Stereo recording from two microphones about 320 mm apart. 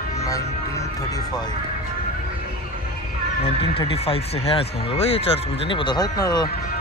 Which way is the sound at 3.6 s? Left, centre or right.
Centre.